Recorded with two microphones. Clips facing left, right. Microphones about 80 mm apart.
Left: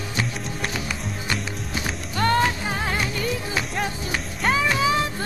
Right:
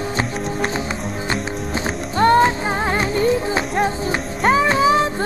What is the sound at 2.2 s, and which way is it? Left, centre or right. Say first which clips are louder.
Music: right 7 dB; right.